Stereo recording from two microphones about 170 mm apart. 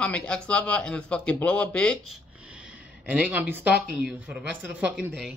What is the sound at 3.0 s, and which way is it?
Speech, 10° right (ahead or behind).